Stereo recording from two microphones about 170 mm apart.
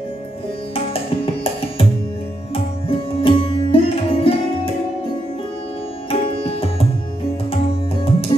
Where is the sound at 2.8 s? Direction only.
35° left (ahead or behind).